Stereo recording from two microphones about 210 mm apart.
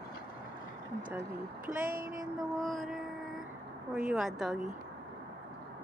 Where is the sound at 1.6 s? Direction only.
40° right (ahead or behind).